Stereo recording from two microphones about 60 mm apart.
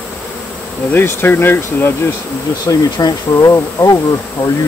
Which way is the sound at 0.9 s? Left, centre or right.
Left.